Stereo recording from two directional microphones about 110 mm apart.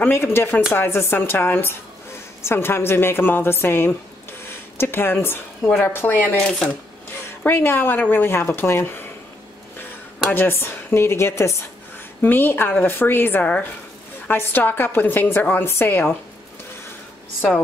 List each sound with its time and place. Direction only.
0.0 s a woman's voice: 20° left (ahead or behind)
7.1 s a woman's voice: 20° left (ahead or behind)
10.3 s a woman's voice: 20° left (ahead or behind)